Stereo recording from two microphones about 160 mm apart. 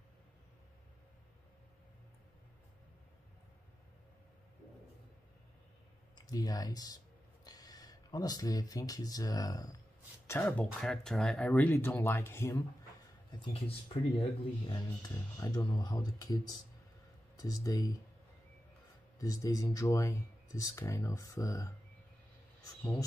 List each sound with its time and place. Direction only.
6.1 s speech: 25° left (ahead or behind)
13.3 s speech: 35° left (ahead or behind)
14.7 s speech: 25° left (ahead or behind)
17.4 s speech: 20° left (ahead or behind)
19.1 s speech: 20° left (ahead or behind)